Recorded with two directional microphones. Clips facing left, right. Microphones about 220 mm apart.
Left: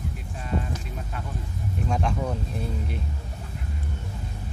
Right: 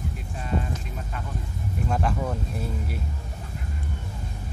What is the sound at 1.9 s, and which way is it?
Speech, 5° right (ahead or behind).